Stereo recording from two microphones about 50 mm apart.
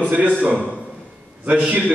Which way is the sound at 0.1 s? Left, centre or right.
Right.